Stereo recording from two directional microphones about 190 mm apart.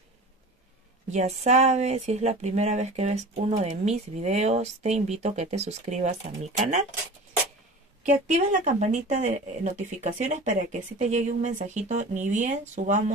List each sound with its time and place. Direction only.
1.1 s speech: 35° right (ahead or behind)
8.0 s speech: 40° right (ahead or behind)